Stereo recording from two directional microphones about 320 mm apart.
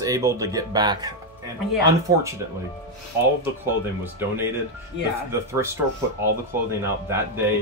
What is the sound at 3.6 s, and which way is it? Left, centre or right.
Speech, centre.